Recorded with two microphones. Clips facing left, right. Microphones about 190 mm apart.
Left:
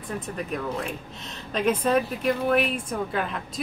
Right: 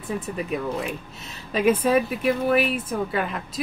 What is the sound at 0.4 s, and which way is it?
Speech, 5° right (ahead or behind).